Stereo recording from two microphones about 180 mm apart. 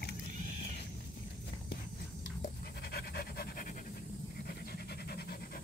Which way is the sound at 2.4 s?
60° left (ahead or behind).